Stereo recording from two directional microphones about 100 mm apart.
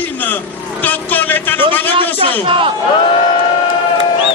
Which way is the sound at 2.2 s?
60° right (ahead or behind).